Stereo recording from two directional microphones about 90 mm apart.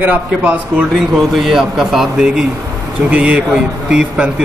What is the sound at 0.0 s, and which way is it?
Speech, 20° right (ahead or behind).